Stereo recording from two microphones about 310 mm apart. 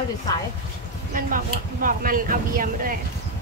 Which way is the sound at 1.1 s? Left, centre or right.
Right.